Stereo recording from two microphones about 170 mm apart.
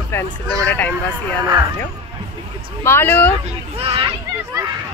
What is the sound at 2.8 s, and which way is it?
Speech, 15° left (ahead or behind).